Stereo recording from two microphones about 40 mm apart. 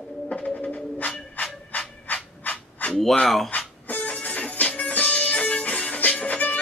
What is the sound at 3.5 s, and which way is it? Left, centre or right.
Music, left.